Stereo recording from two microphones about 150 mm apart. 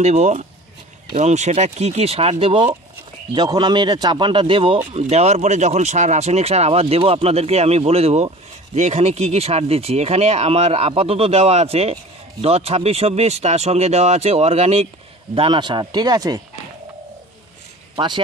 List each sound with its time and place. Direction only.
0.0 s a man's voice: 50° right (ahead or behind); by 16.3 s 25° right (ahead or behind)
17.9 s speech: 30° right (ahead or behind)